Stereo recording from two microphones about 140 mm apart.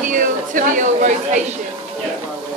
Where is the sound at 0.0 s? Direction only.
70° right (ahead or behind).